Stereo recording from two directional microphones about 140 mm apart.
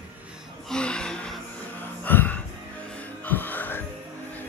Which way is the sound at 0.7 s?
5° left (ahead or behind).